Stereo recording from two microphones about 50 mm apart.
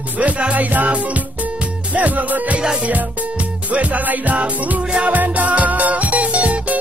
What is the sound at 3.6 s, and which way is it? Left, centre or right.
Music, right.